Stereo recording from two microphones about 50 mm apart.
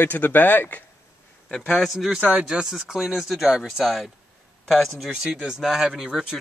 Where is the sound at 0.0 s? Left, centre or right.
Left.